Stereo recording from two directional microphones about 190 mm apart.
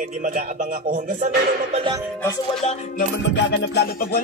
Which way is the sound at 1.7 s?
25° right (ahead or behind).